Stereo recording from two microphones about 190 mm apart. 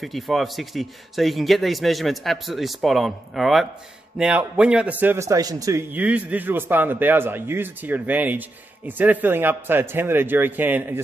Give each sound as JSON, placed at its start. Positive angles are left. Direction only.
{"t": 0.0, "sound": "a man's voice", "side_deg": 0}